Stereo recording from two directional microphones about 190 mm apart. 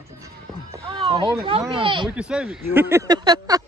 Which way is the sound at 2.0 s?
5° right (ahead or behind).